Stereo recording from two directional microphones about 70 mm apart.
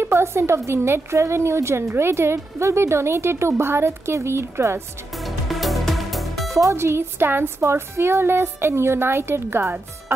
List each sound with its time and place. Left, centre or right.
0.0 s a woman's voice: right
5.1 s music: centre
6.5 s a woman's voice: right